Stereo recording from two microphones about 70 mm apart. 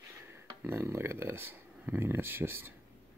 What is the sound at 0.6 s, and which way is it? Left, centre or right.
Speech, right.